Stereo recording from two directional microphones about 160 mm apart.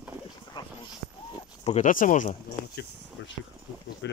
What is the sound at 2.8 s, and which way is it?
Speech, 80° left.